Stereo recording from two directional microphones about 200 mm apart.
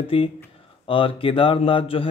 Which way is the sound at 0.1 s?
30° left (ahead or behind).